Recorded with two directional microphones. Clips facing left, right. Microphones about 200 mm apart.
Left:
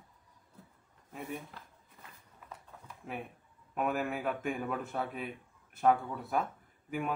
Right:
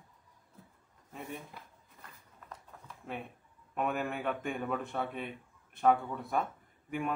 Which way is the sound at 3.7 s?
5° left (ahead or behind).